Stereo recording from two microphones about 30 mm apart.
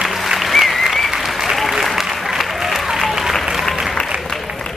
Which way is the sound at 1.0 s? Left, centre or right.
Centre.